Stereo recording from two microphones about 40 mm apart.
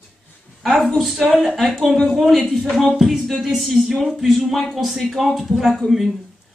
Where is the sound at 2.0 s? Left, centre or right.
Centre.